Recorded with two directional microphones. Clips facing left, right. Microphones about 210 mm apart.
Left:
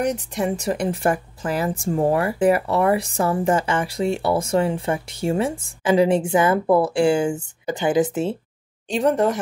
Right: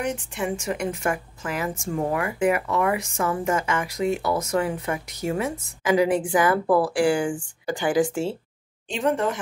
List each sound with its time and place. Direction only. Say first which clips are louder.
0.0 s a woman's voice: left 5 dB; 40° left (ahead or behind); by 8.4 s 20° left (ahead or behind)
8.9 s speech: left 5 dB; 40° left (ahead or behind)